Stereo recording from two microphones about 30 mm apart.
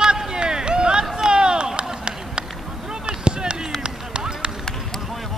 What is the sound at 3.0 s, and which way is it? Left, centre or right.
Basketball bounce, right.